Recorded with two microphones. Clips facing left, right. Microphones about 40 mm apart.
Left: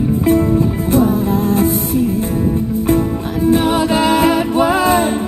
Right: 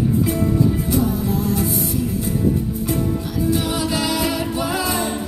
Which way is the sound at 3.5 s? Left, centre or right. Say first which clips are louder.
Left 9 dB; left.